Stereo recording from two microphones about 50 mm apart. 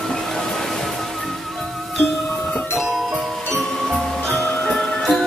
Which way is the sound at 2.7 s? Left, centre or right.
Centre.